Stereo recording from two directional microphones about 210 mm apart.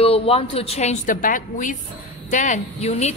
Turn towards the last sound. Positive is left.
turn(degrees=30)  # may be behind; listen again after turning